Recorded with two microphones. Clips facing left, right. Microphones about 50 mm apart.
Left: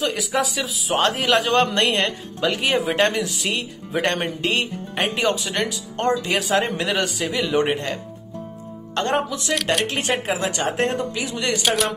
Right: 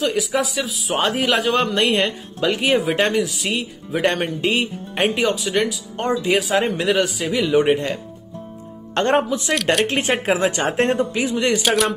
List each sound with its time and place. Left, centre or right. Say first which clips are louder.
0.0 s speech: right 2 dB; centre
8.9 s speech: right 4 dB; right
9.5 s speech: right 2 dB; centre
9.8 s speech: right 4 dB; right
11.6 s speech: even; centre